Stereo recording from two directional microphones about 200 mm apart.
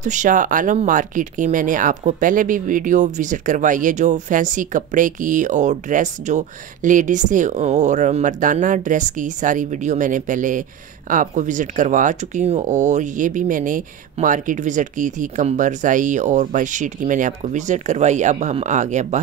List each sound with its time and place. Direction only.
0.0 s speech: 40° right (ahead or behind)